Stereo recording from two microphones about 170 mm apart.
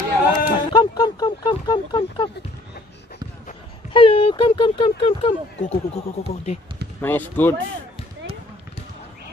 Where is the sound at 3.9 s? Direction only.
30° left (ahead or behind).